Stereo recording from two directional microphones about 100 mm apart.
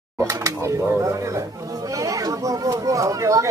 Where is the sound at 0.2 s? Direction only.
35° right (ahead or behind).